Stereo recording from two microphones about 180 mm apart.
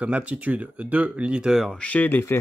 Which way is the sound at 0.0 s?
10° right (ahead or behind).